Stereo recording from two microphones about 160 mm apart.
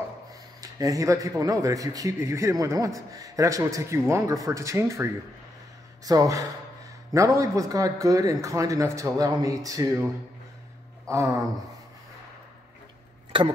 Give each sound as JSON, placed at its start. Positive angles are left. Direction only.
{"t": 0.6, "sound": "a man's voice", "side_deg": -20}
{"t": 11.1, "sound": "speech", "side_deg": -20}
{"t": 13.3, "sound": "speech", "side_deg": -30}